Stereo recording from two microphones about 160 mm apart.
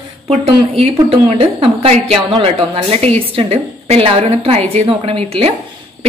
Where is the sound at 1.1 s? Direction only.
35° right (ahead or behind).